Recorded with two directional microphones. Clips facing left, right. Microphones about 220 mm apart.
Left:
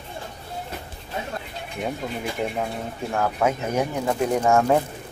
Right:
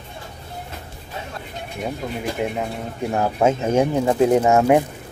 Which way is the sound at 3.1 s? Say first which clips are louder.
Right 4 dB; 25° right (ahead or behind).